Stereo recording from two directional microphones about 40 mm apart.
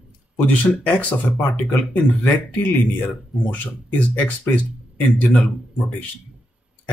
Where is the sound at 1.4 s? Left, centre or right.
Left.